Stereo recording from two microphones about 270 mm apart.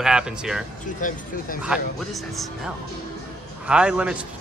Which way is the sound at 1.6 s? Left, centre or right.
Centre.